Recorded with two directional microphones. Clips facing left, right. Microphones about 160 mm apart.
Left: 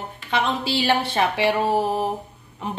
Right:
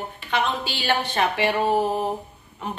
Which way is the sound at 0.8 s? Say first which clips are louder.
Left 1 dB; 25° left (ahead or behind).